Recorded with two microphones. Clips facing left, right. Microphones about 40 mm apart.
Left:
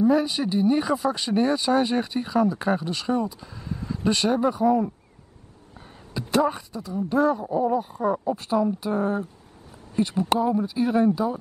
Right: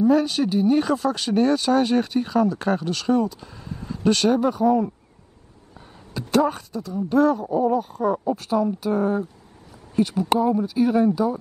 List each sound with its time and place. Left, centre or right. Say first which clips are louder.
0.0 s speech: right 2 dB; centre
3.3 s speech: left 2 dB; centre
6.1 s a sound: right 2 dB; centre
7.2 s speech: right 3 dB; centre
7.4 s speech: right 2 dB; centre
7.7 s speech: right 2 dB; centre
8.9 s speech: right 3 dB; centre
10.3 s speech: right 3 dB; centre